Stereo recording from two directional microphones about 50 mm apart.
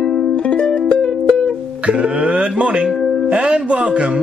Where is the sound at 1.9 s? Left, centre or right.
Right.